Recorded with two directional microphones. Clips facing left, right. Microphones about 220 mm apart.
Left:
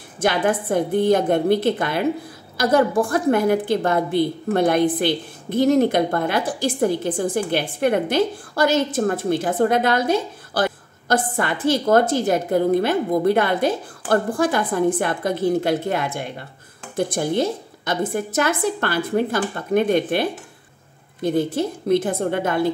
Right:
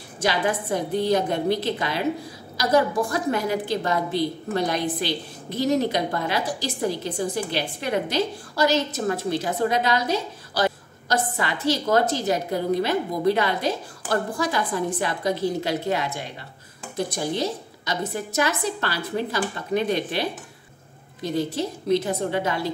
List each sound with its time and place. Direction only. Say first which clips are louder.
0.2 s a woman's voice: left 4 dB; 50° left (ahead or behind)